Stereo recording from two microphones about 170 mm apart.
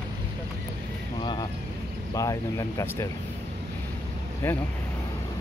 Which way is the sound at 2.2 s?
20° left (ahead or behind).